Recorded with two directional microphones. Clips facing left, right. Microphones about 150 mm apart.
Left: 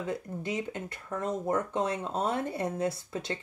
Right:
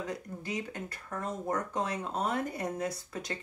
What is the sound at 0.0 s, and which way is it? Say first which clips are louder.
Speech: left 4 dB; 25° left (ahead or behind).